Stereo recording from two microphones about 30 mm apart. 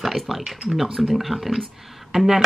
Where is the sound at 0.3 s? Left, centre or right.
Centre.